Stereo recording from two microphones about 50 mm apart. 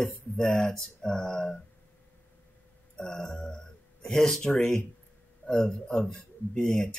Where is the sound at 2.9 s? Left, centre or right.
Centre.